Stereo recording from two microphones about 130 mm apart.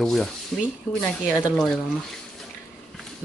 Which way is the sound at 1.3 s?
5° left (ahead or behind).